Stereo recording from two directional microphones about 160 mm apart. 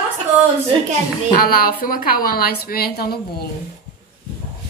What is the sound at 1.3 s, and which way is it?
A woman's voice, 65° left (ahead or behind).